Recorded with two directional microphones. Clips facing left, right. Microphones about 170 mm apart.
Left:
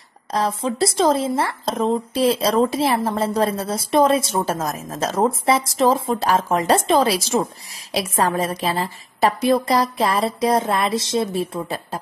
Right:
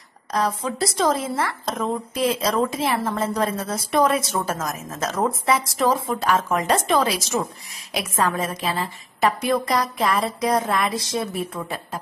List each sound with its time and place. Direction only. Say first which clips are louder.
0.3 s a woman's voice: left 2 dB; 30° left (ahead or behind)